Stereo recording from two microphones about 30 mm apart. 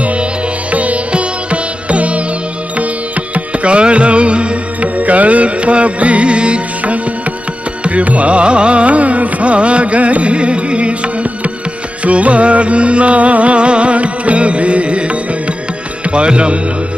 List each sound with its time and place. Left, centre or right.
0.0 s music: right
3.3 s music: right
4.8 s music: right
7.8 s music: right
12.0 s music: right